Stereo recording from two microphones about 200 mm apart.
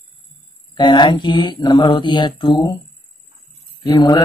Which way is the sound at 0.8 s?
20° left (ahead or behind).